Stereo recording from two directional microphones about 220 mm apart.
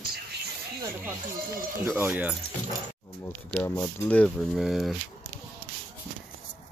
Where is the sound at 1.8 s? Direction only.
10° right (ahead or behind).